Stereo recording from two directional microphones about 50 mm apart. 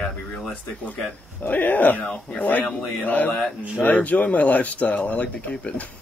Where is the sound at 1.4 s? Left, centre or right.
Left.